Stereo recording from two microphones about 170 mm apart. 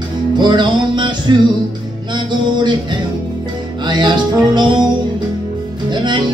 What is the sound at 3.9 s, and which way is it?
Music, 25° right (ahead or behind).